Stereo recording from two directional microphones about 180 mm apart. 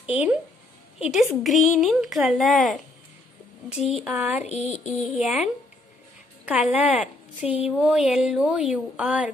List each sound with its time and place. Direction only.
0.0 s a woman's voice: 5° right (ahead or behind)
4.5 s child singing: 35° left (ahead or behind)
4.8 s a woman's voice: centre (ahead or behind)